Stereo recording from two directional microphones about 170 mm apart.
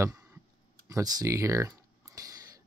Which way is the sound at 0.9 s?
20° right (ahead or behind).